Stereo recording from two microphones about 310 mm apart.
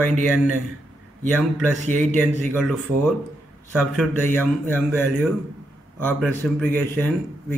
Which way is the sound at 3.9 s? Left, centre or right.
Centre.